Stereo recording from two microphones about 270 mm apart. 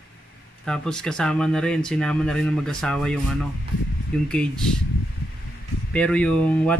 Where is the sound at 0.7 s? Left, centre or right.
Centre.